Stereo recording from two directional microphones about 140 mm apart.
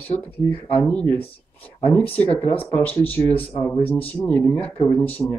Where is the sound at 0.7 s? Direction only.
10° left (ahead or behind).